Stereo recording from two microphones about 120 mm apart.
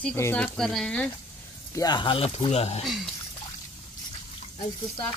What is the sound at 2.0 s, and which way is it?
Speech, 45° left (ahead or behind).